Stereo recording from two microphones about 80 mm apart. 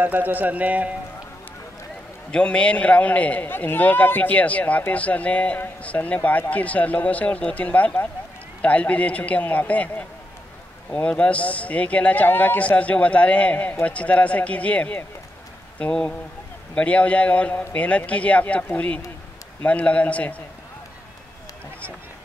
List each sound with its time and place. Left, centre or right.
0.0 s speech: right
2.3 s a man's voice: centre